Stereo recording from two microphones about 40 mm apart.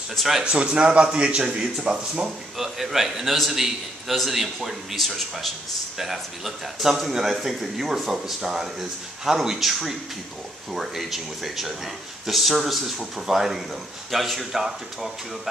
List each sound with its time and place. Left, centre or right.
0.1 s a man's voice: centre
0.4 s speech: right
2.5 s a man's voice: centre